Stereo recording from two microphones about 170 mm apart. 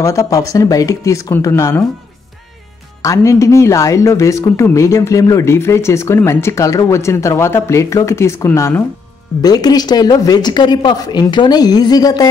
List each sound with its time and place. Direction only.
0.0 s speech: 20° left (ahead or behind)
3.0 s speech: 20° left (ahead or behind)